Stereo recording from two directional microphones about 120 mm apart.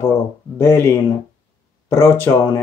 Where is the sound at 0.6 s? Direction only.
20° left (ahead or behind).